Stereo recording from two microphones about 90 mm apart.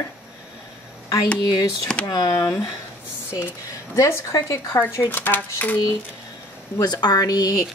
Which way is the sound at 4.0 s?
35° left (ahead or behind).